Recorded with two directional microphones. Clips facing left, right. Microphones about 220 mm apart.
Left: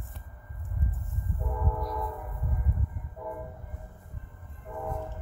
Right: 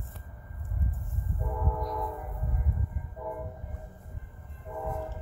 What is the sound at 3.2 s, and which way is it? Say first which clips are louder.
Train: right 1 dB; centre (ahead or behind).